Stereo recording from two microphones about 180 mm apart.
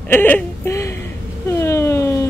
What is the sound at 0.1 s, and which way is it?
Speech, 10° left (ahead or behind).